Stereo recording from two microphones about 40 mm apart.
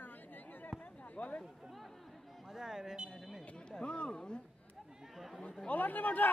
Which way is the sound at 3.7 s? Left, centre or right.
Left.